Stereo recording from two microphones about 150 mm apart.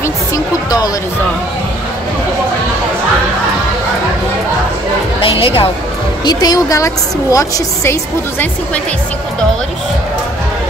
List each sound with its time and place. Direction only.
0.0 s music: 25° left (ahead or behind)
5.2 s a woman's voice: 40° left (ahead or behind)
6.2 s a woman's voice: 25° left (ahead or behind)